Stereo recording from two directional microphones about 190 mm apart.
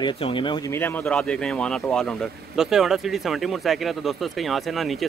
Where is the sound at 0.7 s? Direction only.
10° left (ahead or behind).